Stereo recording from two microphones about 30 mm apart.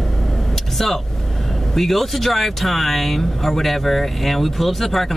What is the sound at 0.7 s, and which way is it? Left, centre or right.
Speech, centre.